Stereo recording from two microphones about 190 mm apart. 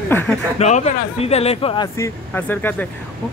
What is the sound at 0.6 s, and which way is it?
Speech, 35° left (ahead or behind).